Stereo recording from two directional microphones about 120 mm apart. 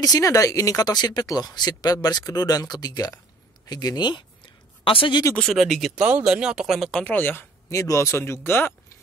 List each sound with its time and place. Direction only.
0.0 s speech: 30° left (ahead or behind); by 5.2 s 45° left (ahead or behind)
5.3 s speech: 5° left (ahead or behind)
6.9 s speech: 10° left (ahead or behind)